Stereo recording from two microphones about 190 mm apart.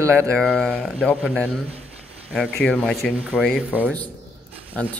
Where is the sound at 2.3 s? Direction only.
5° left (ahead or behind).